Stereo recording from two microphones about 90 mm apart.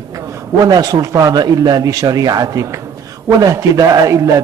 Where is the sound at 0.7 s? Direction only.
45° right (ahead or behind).